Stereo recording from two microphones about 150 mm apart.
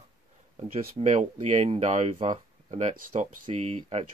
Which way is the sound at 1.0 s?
50° right (ahead or behind).